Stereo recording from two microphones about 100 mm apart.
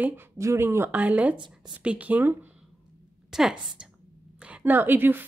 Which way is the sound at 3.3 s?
5° right (ahead or behind).